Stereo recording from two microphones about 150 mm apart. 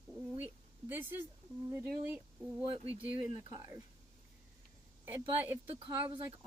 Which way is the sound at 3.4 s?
20° right (ahead or behind).